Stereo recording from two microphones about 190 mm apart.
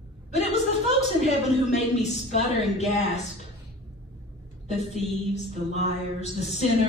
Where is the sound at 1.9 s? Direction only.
35° left (ahead or behind).